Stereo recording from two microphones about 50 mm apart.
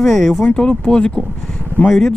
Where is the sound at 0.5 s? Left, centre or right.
Centre.